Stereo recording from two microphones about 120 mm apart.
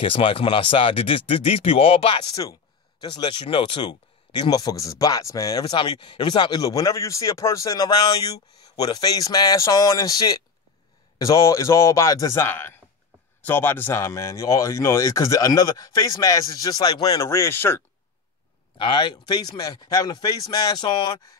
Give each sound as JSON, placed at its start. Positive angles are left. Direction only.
{"t": 0.0, "sound": "speech", "side_deg": 50}
{"t": 18.8, "sound": "speech", "side_deg": 45}